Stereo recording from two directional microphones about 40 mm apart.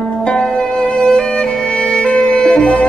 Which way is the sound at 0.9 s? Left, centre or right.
Left.